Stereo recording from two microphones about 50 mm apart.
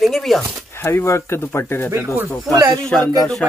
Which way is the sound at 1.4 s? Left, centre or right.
Left.